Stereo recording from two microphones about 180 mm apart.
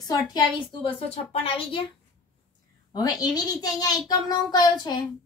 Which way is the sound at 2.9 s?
20° left (ahead or behind).